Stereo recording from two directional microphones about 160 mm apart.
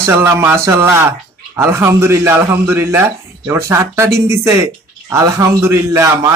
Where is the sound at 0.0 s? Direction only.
15° right (ahead or behind).